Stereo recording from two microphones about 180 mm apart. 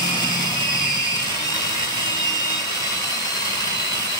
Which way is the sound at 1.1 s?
20° left (ahead or behind).